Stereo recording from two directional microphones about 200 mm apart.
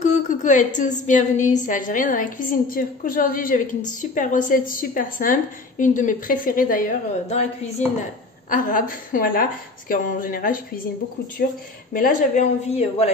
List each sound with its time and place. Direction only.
0.0 s a woman's voice: 40° left (ahead or behind)